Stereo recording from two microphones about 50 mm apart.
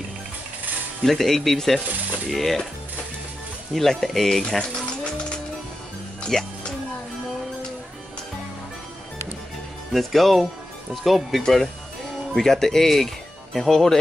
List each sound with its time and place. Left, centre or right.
1.0 s speech: centre
3.7 s speech: centre
6.2 s music: centre
9.9 s speech: centre